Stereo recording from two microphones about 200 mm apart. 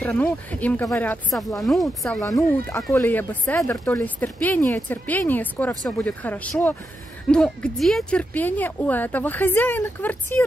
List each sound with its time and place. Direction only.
0.0 s speech: 10° left (ahead or behind)
2.2 s speech: 15° left (ahead or behind)